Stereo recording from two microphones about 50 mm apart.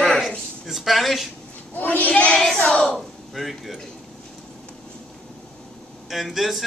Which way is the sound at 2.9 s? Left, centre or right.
Centre.